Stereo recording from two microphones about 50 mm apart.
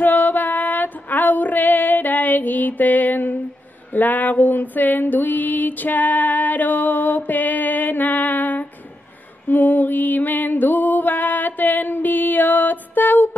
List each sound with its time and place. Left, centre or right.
0.0 s female singing: left
3.9 s a sound: left
9.5 s music: left